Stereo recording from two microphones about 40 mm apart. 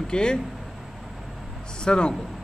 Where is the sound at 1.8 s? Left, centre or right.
Left.